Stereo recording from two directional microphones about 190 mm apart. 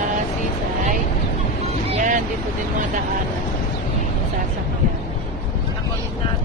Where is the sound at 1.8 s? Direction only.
40° right (ahead or behind).